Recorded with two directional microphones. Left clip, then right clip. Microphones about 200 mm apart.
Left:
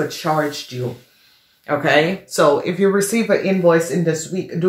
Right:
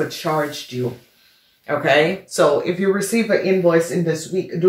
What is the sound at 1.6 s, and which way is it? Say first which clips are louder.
Speech: even; 35° left (ahead or behind).